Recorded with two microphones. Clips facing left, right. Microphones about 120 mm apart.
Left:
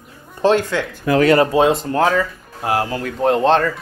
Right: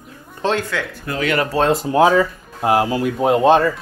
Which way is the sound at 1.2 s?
35° left (ahead or behind).